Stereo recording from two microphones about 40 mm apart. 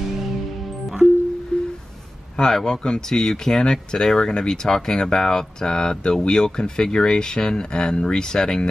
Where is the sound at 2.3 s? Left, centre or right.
Centre.